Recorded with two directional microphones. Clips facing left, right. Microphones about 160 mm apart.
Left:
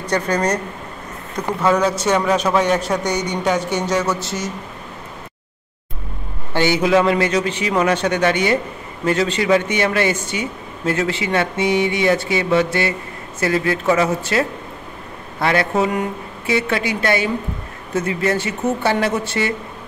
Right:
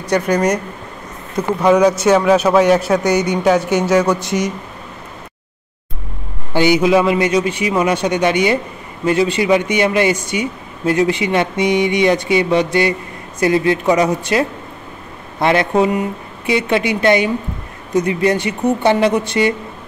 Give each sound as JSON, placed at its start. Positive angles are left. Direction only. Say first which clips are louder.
{"t": 0.0, "sound": "speech", "louder": "right 4 dB", "side_deg": -10}
{"t": 6.5, "sound": "speech", "louder": "right 3 dB", "side_deg": -15}